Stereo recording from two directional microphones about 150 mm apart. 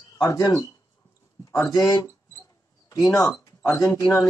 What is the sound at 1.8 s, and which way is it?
Speech, 25° left (ahead or behind).